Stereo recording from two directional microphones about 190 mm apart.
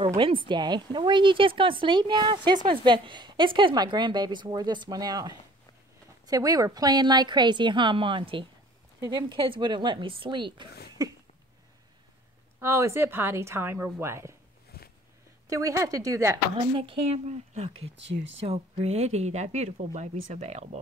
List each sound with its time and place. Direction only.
0.1 s a woman's voice: 25° right (ahead or behind)
12.5 s a woman's voice: 15° right (ahead or behind)
14.7 s a sound: 55° left (ahead or behind)
15.4 s a woman's voice: 15° right (ahead or behind)
16.7 s a woman's voice: 30° right (ahead or behind)
17.9 s speech: 70° right (ahead or behind)
18.4 s a woman's voice: 30° right (ahead or behind)